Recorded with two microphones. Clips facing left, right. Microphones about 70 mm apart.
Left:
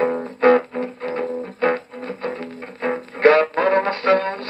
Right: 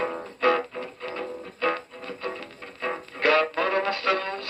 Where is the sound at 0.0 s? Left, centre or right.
Left.